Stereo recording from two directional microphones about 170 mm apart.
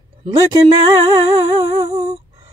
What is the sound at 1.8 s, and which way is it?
Speech, 40° right (ahead or behind).